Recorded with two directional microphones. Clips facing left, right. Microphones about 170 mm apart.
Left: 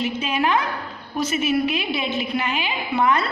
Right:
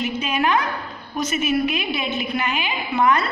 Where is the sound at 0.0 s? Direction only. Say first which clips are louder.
Even; 30° left (ahead or behind).